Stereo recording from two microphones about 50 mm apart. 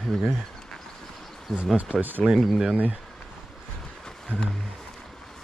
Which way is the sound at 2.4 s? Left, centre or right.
Centre.